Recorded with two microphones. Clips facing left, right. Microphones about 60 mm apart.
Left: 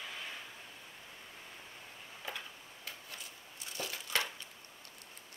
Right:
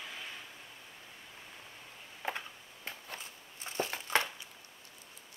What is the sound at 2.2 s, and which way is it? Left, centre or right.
Tick-tock, right.